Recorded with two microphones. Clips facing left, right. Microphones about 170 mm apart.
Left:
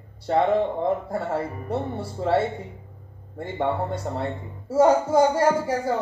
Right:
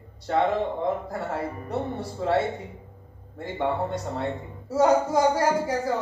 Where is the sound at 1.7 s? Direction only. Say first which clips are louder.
Left 2 dB; 30° left (ahead or behind).